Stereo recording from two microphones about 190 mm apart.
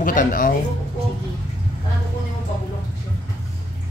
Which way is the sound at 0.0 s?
45° left (ahead or behind).